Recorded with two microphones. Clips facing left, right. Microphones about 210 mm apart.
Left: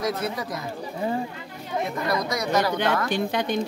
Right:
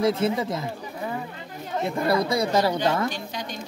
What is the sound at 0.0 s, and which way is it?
Speech, 25° right (ahead or behind).